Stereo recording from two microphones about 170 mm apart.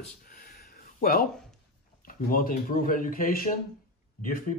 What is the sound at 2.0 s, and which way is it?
Speech, 55° left (ahead or behind).